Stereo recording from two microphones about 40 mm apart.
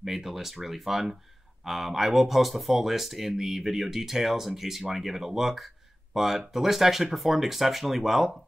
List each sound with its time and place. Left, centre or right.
0.0 s speech: centre